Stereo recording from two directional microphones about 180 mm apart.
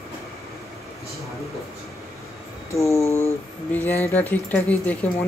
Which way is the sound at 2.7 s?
15° left (ahead or behind).